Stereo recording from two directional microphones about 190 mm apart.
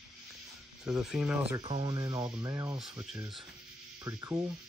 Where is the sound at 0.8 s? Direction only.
5° right (ahead or behind).